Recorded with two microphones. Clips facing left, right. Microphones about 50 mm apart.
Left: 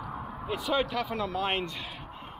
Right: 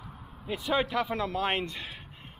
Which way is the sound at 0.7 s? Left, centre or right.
Centre.